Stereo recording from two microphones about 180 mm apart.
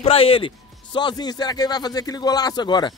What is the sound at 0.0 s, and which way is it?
A man's voice, 30° left (ahead or behind).